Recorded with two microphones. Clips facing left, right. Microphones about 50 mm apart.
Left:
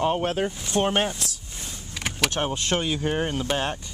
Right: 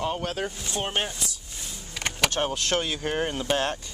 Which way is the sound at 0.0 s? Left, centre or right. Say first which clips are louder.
Left 5 dB; left.